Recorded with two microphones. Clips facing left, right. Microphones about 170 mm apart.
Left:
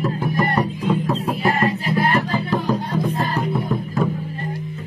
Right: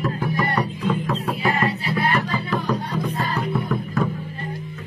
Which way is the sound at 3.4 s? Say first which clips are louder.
Left 2 dB; 25° left (ahead or behind).